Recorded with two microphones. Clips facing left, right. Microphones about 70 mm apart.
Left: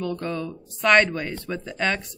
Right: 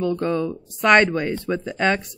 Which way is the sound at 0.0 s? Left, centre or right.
Right.